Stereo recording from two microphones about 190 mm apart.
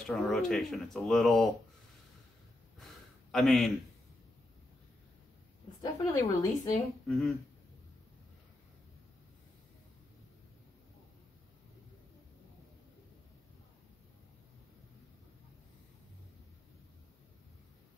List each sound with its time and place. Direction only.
0.0 s speech: centre (ahead or behind)
2.8 s a sound: centre (ahead or behind)
5.8 s a woman's voice: 20° left (ahead or behind)
7.1 s speech: centre (ahead or behind)